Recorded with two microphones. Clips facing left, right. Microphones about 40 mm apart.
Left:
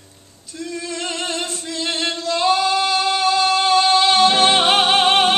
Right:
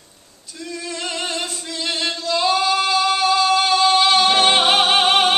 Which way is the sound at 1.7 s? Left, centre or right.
Left.